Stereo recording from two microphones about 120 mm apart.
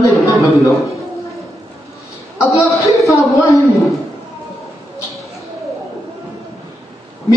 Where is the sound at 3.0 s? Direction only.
25° left (ahead or behind).